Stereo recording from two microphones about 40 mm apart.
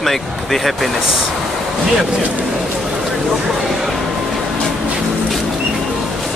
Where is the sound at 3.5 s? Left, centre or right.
Centre.